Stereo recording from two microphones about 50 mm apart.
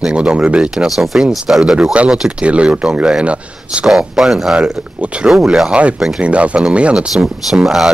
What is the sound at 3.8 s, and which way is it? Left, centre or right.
Speech, centre.